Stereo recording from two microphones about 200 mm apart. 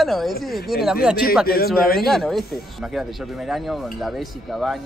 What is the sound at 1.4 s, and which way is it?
Speech, 50° left (ahead or behind).